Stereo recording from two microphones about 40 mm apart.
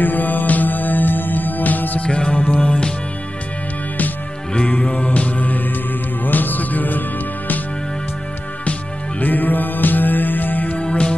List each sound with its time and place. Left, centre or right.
0.0 s music: left
2.0 s music: left
2.3 s music: left
4.6 s music: left
5.1 s music: left
9.2 s music: left
10.8 s music: left